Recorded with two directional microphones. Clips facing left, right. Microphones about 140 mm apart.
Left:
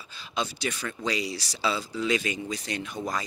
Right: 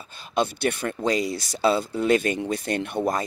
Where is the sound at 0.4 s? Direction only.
55° right (ahead or behind).